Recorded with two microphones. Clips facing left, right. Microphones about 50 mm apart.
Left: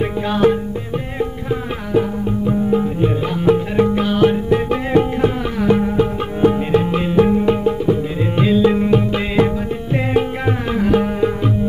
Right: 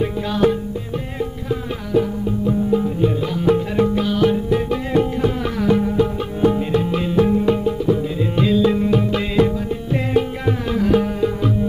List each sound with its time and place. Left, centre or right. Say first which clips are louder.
0.0 s music: left 2 dB; left
5.6 s music: left 2 dB; left